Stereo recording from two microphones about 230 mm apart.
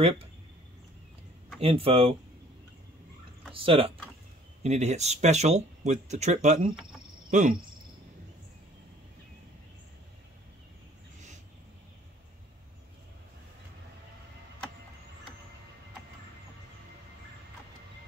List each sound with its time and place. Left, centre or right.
1.6 s speech: right
3.5 s speech: right